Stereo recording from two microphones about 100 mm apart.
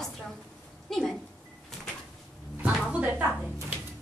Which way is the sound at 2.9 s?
10° right (ahead or behind).